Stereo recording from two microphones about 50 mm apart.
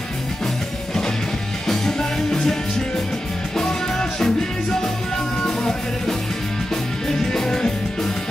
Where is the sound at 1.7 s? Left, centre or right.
Centre.